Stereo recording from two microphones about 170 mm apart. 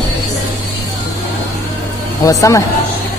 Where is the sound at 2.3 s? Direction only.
20° left (ahead or behind).